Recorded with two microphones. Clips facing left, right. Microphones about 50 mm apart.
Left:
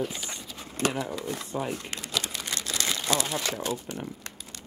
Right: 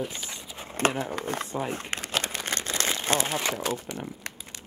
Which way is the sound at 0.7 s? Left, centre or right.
Right.